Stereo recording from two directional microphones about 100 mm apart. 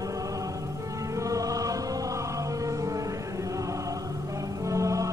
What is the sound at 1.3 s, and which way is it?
Music, 35° right (ahead or behind).